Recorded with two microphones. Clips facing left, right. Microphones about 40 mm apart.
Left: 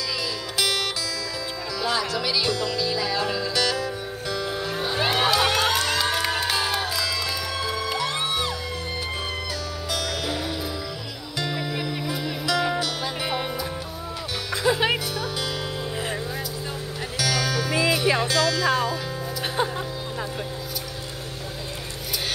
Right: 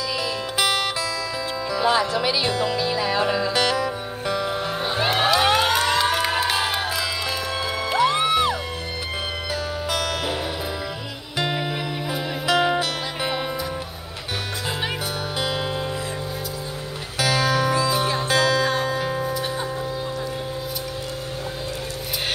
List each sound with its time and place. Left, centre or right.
0.2 s music: right
4.9 s crowd: centre
9.8 s music: right
14.7 s music: left
17.2 s music: right
17.8 s music: left
18.2 s music: right
19.4 s music: left